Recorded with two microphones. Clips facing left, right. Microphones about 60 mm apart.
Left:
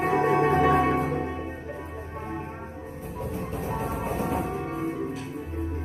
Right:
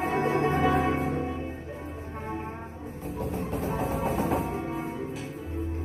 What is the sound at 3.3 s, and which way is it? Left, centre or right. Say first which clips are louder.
Music: even; right.